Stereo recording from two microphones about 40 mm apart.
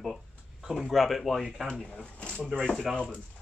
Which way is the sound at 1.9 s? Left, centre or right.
Left.